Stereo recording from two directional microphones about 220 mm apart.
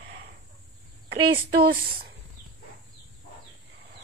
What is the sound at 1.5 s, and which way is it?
Speech, 45° right (ahead or behind).